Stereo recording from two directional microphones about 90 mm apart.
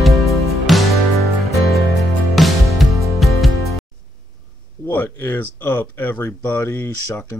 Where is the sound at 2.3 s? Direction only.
Centre (ahead or behind).